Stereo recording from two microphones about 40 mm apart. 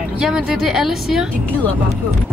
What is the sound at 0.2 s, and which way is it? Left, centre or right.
Speech, centre.